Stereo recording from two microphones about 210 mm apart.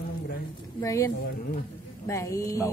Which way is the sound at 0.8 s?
15° left (ahead or behind).